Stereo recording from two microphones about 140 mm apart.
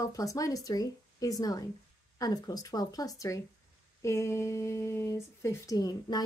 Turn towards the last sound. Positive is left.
turn(degrees=25)  # may be behind; listen again after turning